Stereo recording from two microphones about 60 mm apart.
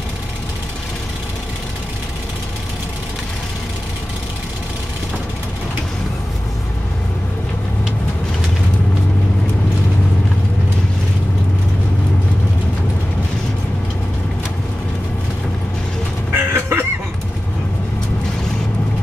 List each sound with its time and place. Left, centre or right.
16.3 s chicken: right